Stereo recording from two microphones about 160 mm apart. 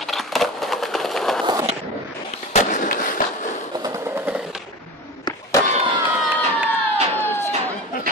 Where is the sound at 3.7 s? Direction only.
20° right (ahead or behind); by 4.6 s 5° right (ahead or behind).